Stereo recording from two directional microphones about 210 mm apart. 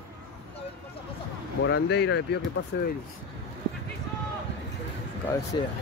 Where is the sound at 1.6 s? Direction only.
55° left (ahead or behind).